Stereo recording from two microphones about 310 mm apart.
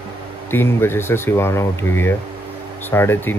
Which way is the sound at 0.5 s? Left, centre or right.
Centre.